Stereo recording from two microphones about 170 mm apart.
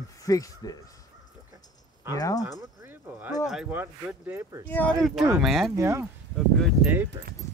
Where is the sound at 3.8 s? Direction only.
15° right (ahead or behind).